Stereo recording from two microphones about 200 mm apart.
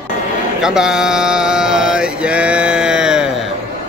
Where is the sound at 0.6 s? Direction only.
5° right (ahead or behind).